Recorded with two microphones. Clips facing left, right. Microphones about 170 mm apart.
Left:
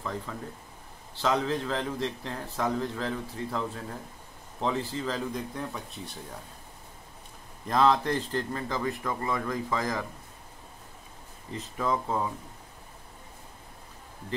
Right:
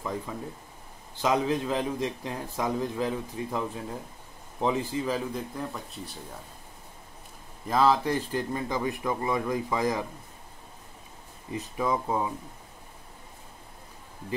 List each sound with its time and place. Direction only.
0.0 s a man's voice: 15° right (ahead or behind)
7.6 s a man's voice: 5° right (ahead or behind)
11.5 s a man's voice: 10° right (ahead or behind)